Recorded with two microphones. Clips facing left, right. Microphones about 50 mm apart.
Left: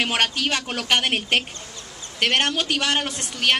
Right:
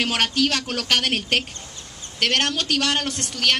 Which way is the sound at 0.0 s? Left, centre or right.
Centre.